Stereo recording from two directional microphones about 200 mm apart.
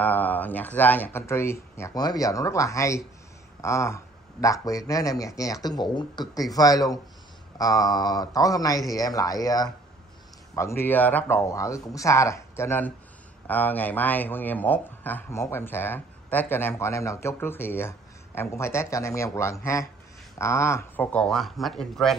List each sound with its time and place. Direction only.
0.0 s speech: 10° left (ahead or behind)